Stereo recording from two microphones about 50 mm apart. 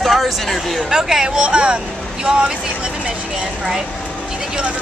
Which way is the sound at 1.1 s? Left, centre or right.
Centre.